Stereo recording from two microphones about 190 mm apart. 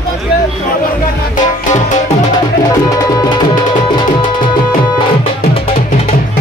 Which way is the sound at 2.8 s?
20° left (ahead or behind).